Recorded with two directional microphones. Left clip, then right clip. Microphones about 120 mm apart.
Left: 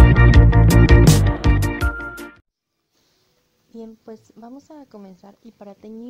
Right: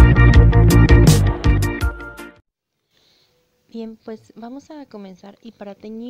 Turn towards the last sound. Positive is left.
turn(degrees=-20)  # may be behind; listen again after turning